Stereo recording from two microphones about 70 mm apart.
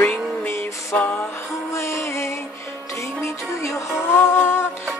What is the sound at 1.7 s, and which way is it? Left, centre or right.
Music, left.